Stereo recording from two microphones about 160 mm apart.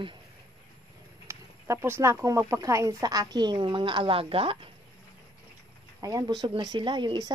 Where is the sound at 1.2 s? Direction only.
15° right (ahead or behind); by 4.6 s 35° right (ahead or behind).